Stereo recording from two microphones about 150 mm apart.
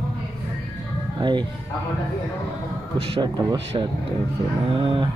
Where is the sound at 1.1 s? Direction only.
30° right (ahead or behind).